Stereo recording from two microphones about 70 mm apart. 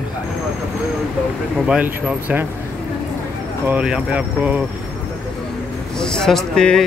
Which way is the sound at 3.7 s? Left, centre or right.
Centre.